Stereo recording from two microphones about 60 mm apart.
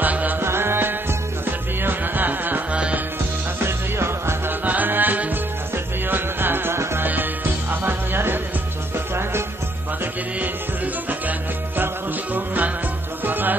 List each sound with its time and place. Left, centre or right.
0.0 s music: right
0.4 s music: right
3.5 s music: right
4.5 s music: right
7.7 s music: right
11.1 s music: right